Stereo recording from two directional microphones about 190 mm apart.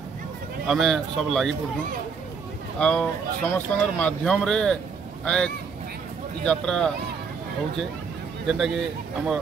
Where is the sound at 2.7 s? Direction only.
5° left (ahead or behind).